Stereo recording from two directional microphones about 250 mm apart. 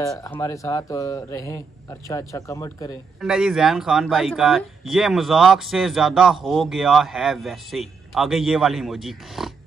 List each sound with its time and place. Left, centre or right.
0.2 s a man's voice: centre
3.2 s speech: centre